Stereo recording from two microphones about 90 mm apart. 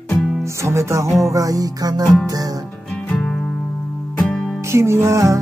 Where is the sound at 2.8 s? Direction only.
10° left (ahead or behind).